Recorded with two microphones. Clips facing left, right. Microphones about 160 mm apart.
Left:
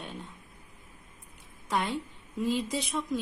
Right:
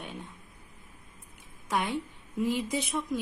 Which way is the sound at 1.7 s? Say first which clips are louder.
Even; 20° right (ahead or behind).